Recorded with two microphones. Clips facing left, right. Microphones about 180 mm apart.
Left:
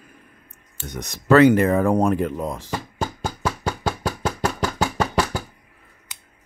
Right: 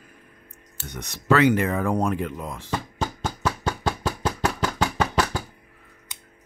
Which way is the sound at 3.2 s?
10° left (ahead or behind).